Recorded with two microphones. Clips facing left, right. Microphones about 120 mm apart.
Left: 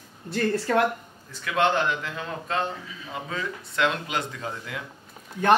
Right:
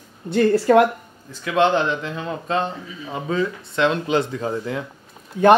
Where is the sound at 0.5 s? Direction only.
30° right (ahead or behind).